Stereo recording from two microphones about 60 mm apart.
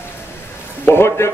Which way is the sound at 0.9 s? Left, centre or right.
Left.